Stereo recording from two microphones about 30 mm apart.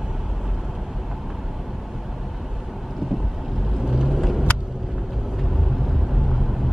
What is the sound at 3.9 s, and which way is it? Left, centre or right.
Vehicle, centre.